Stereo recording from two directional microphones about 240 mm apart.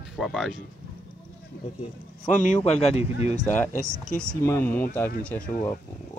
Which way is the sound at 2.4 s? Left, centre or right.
Left.